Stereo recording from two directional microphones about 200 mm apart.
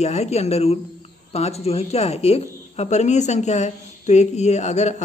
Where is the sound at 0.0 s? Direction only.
35° left (ahead or behind).